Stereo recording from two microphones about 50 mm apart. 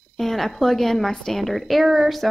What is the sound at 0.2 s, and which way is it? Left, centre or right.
A woman's voice, centre.